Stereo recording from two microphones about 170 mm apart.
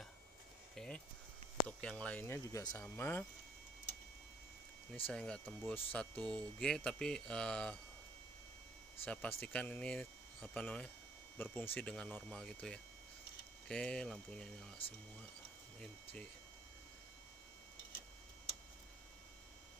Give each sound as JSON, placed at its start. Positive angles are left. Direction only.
{"t": 0.7, "sound": "a sound", "side_deg": 5}
{"t": 1.7, "sound": "speech", "side_deg": 5}
{"t": 5.0, "sound": "speech", "side_deg": 5}
{"t": 9.0, "sound": "speech", "side_deg": 5}
{"t": 14.8, "sound": "speech", "side_deg": 30}
{"t": 15.8, "sound": "speech", "side_deg": 5}